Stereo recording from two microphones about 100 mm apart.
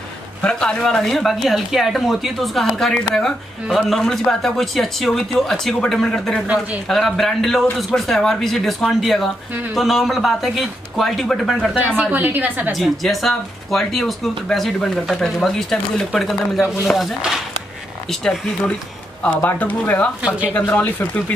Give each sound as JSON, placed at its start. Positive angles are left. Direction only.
{"t": 0.4, "sound": "speech", "side_deg": 10}
{"t": 6.4, "sound": "a woman's voice", "side_deg": -10}
{"t": 6.9, "sound": "speech", "side_deg": 5}
{"t": 12.0, "sound": "a woman's voice", "side_deg": -15}
{"t": 12.7, "sound": "speech", "side_deg": 0}
{"t": 19.2, "sound": "speech", "side_deg": 15}
{"t": 20.2, "sound": "a woman's voice", "side_deg": -10}
{"t": 20.6, "sound": "speech", "side_deg": 15}